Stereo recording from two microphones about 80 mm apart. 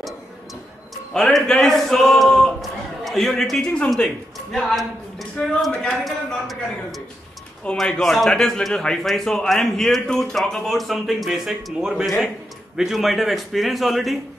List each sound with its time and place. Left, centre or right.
1.1 s a man's voice: centre
6.0 s a man's voice: centre